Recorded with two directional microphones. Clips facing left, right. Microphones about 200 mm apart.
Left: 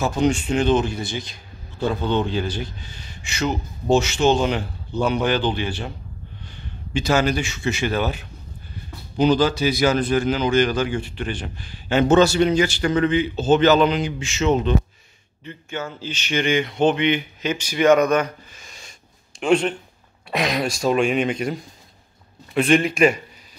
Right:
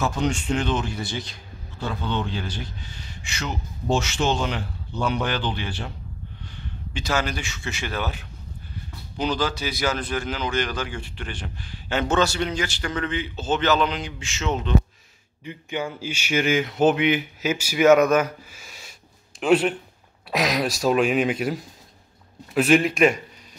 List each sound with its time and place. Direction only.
0.0 s a man's voice: 10° left (ahead or behind)
3.9 s a man's voice: 10° left (ahead or behind)
7.2 s a man's voice: 15° left (ahead or behind)
9.2 s a man's voice: 20° left (ahead or behind)
11.0 s a man's voice: 5° left (ahead or behind)
15.4 s a man's voice: 15° right (ahead or behind)